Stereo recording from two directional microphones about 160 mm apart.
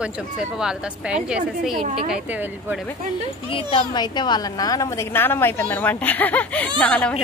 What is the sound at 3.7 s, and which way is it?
A woman's voice, 25° left (ahead or behind).